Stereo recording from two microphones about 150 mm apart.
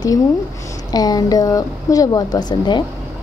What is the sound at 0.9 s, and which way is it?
A woman's voice, 25° left (ahead or behind).